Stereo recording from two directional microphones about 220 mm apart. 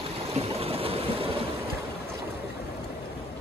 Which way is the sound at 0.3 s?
25° right (ahead or behind).